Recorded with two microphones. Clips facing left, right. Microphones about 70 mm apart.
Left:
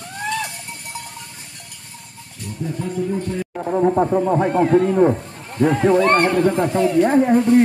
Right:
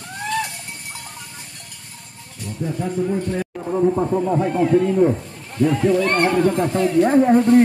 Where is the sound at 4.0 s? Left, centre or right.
Left.